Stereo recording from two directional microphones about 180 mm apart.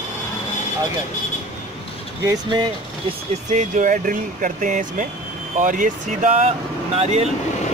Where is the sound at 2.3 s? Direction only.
25° right (ahead or behind).